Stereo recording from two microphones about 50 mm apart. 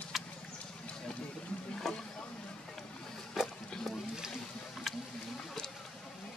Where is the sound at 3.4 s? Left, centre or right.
Centre.